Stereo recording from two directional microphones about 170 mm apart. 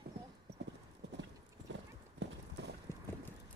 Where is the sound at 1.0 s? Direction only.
90° right.